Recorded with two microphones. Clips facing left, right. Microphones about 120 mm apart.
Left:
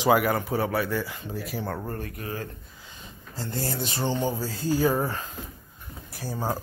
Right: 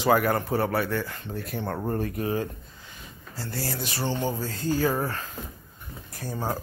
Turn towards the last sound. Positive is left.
turn(degrees=5)  # may be behind; listen again after turning